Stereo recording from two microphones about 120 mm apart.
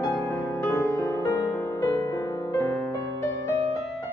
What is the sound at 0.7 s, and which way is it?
Music, 25° left (ahead or behind).